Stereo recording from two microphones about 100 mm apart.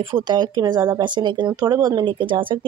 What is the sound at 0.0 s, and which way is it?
Speech, 50° right (ahead or behind).